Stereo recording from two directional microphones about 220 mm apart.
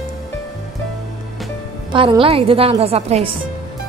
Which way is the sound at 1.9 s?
25° right (ahead or behind).